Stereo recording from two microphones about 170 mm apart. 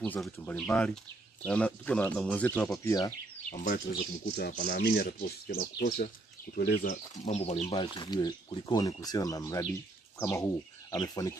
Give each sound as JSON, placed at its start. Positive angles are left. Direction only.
{"t": 0.0, "sound": "speech", "side_deg": 10}
{"t": 2.9, "sound": "speech", "side_deg": 20}
{"t": 3.4, "sound": "speech", "side_deg": 50}
{"t": 4.4, "sound": "speech", "side_deg": 80}
{"t": 6.8, "sound": "speech", "side_deg": 45}